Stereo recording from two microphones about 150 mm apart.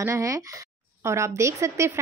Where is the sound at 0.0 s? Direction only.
20° right (ahead or behind).